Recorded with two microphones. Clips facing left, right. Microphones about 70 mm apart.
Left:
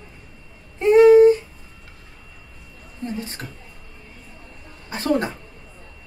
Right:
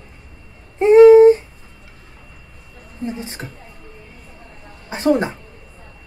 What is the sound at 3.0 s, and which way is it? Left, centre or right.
Wail, centre.